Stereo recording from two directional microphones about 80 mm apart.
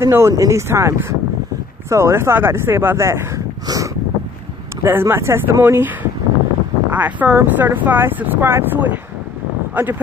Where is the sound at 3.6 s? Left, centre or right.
Right.